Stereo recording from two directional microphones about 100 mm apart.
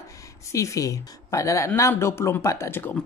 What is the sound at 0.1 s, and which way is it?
A woman's voice, 35° left (ahead or behind).